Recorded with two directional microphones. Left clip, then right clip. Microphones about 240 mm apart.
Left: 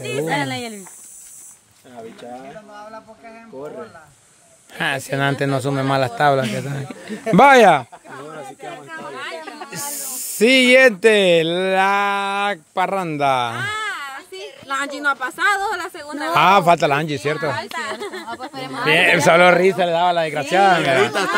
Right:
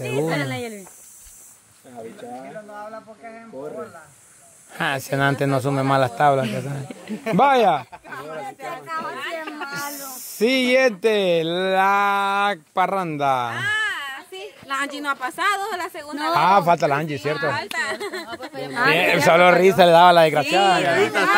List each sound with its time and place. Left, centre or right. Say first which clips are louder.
0.3 s speech: left 3 dB; left
2.7 s a man's voice: right 1 dB; centre
7.3 s speech: left 6 dB; left
8.1 s a sound: right 2 dB; right
10.3 s speech: left 6 dB; left
13.6 s a sound: right 1 dB; centre
14.7 s a man's voice: left 4 dB; centre
16.3 s speech: left 3 dB; centre
17.7 s speech: right 1 dB; centre
18.9 s speech: left 4 dB; centre
19.8 s a man's voice: right 5 dB; right
20.5 s speech: left 7 dB; left